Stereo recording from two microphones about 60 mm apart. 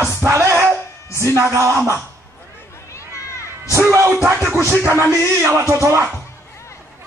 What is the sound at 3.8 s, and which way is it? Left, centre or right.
Speech, right.